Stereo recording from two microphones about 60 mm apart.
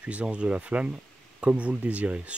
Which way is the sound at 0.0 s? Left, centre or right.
Right.